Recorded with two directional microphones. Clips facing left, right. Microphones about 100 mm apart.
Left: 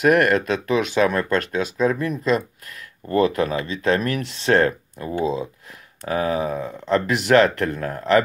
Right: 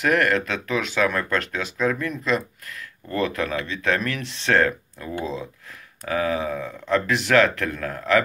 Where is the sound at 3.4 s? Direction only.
40° left (ahead or behind).